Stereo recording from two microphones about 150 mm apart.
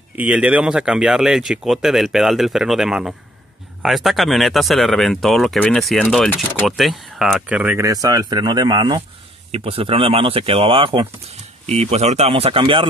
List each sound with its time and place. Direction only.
0.2 s speech: 10° right (ahead or behind); by 9.0 s 30° right (ahead or behind)
9.5 s speech: 40° right (ahead or behind)